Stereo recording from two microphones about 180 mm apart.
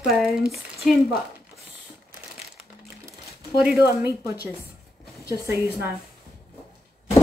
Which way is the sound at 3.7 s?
15° right (ahead or behind).